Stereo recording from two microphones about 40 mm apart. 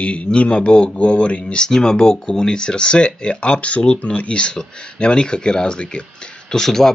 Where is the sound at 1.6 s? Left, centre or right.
Centre.